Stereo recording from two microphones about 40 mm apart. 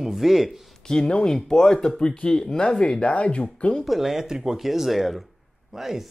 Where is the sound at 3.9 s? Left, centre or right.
Centre.